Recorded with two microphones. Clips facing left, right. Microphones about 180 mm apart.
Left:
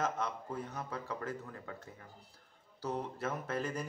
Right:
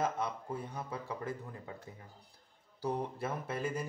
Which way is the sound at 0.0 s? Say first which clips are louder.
Right 1 dB; 10° right (ahead or behind).